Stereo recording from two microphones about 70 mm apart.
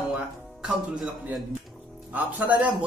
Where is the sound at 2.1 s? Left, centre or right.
Centre.